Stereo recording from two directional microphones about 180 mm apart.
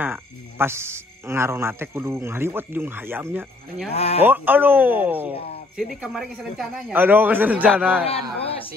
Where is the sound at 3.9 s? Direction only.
35° left (ahead or behind).